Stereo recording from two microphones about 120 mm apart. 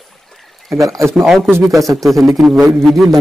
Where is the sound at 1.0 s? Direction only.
Centre (ahead or behind).